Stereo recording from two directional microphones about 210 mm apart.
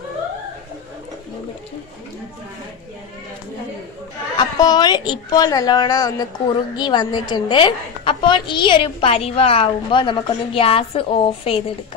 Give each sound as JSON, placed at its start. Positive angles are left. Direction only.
{"t": 4.4, "sound": "a woman's voice", "side_deg": 20}